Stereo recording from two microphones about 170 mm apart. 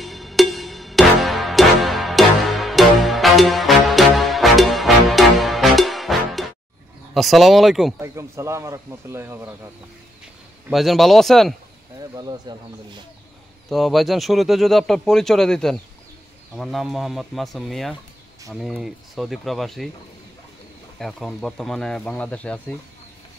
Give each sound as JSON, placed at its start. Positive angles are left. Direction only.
{"t": 0.0, "sound": "music", "side_deg": 0}
{"t": 7.2, "sound": "speech", "side_deg": 0}
{"t": 8.0, "sound": "speech", "side_deg": -15}
{"t": 10.7, "sound": "speech", "side_deg": 0}
{"t": 12.2, "sound": "speech", "side_deg": -25}
{"t": 13.7, "sound": "speech", "side_deg": 0}
{"t": 21.0, "sound": "speech", "side_deg": 0}